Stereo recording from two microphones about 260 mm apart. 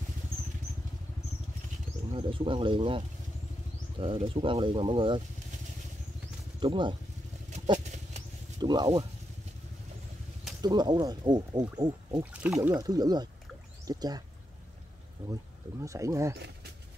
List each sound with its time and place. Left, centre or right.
2.1 s speech: centre
4.0 s speech: right
6.6 s speech: centre
7.5 s a sound: right
8.5 s speech: centre
10.6 s speech: centre
15.8 s speech: centre